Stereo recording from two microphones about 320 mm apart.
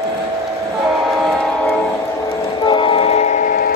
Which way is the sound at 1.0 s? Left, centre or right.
Centre.